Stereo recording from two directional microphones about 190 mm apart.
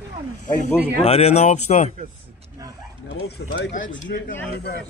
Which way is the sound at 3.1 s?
60° left (ahead or behind).